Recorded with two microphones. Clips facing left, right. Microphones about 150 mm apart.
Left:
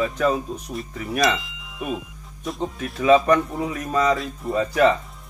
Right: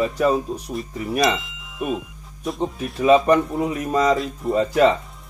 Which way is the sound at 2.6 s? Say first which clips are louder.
Right 2 dB; 10° right (ahead or behind).